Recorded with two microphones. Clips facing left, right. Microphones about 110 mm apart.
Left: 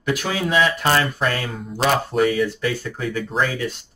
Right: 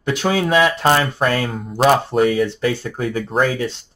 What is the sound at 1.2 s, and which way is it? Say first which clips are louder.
Speech: right 4 dB; 45° right (ahead or behind).